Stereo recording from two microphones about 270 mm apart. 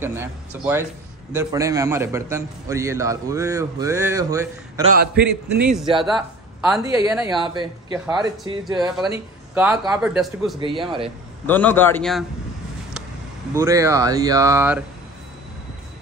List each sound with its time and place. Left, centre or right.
0.0 s a man's voice: centre
4.9 s a man's voice: right
5.6 s a man's voice: centre
5.9 s a man's voice: centre
9.5 s a man's voice: centre
13.5 s a man's voice: centre